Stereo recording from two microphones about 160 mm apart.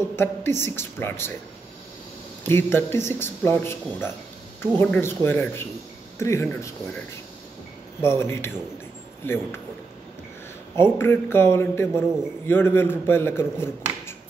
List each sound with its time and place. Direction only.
0.1 s speech: 15° left (ahead or behind)
2.4 s speech: 15° left (ahead or behind)
8.0 s speech: 15° left (ahead or behind)
10.8 s speech: 15° left (ahead or behind)